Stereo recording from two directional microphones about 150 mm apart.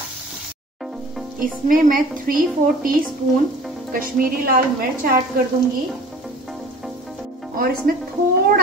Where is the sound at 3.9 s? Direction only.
70° right (ahead or behind).